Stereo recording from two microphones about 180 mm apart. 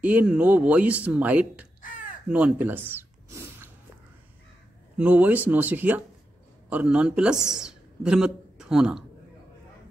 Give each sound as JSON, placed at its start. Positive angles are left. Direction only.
{"t": 0.0, "sound": "speech", "side_deg": -10}
{"t": 1.8, "sound": "crow", "side_deg": 45}
{"t": 2.2, "sound": "a sound", "side_deg": -10}
{"t": 4.9, "sound": "a man's voice", "side_deg": -10}